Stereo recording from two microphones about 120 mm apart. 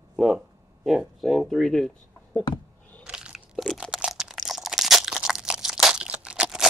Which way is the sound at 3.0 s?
5° right (ahead or behind).